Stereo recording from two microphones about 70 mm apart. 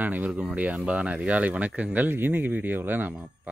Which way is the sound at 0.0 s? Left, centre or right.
Right.